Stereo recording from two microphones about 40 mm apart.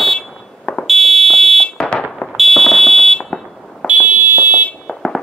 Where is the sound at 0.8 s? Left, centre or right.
Centre.